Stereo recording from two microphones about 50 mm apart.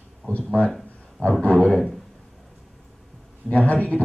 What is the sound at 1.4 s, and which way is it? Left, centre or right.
Speech, left.